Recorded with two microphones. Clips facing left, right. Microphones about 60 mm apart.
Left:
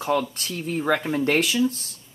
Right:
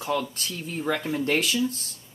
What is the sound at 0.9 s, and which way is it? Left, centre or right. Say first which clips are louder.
Speech: left 5 dB; left.